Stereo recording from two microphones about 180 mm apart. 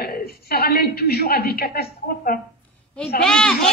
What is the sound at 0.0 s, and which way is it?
A woman's voice, 55° left (ahead or behind).